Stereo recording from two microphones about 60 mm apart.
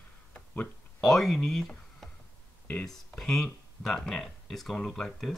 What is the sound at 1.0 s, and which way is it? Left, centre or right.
Speech, centre.